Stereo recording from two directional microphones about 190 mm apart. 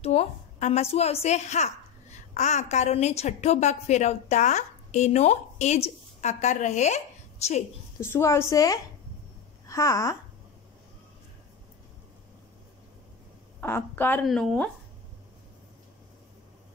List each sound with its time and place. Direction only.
0.0 s a woman's voice: 35° left (ahead or behind)
8.0 s a woman's voice: 15° left (ahead or behind)
13.6 s a woman's voice: 10° left (ahead or behind)